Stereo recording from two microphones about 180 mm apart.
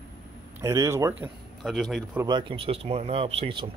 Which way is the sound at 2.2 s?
25° right (ahead or behind).